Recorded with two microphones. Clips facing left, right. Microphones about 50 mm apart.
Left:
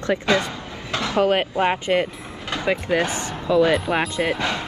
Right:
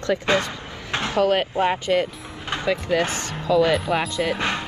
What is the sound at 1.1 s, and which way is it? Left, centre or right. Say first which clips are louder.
Speech: left 1 dB; left.